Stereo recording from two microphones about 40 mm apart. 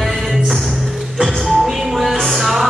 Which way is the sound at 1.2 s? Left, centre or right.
Centre.